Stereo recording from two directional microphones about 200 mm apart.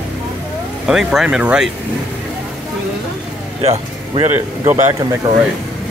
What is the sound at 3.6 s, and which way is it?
Speech, 30° right (ahead or behind).